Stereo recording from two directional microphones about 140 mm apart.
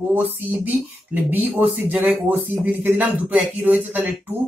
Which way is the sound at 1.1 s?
10° right (ahead or behind).